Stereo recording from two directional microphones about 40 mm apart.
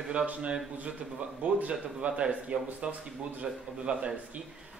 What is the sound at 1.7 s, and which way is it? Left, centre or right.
Speech, right.